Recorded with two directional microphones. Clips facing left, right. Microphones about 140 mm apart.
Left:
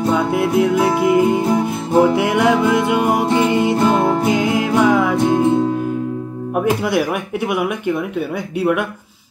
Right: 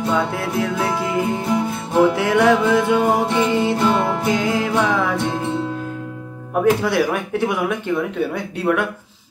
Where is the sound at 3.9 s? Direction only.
45° left (ahead or behind).